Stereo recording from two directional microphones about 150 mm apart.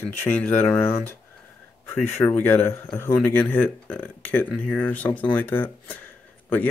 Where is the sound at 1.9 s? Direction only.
15° left (ahead or behind).